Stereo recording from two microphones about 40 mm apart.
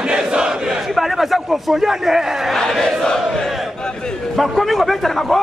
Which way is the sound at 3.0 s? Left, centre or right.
Centre.